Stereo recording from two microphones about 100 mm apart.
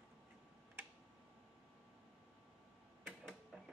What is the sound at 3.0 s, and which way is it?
Printer, centre (ahead or behind).